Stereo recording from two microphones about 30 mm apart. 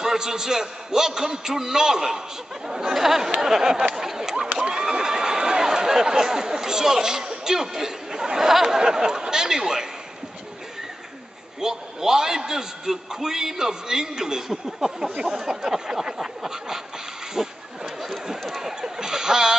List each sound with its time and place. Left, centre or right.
0.0 s a man's voice: centre
3.7 s a man's voice: right
4.0 s a sound: centre
4.6 s speech: right
11.6 s a man's voice: centre
17.3 s a sound: centre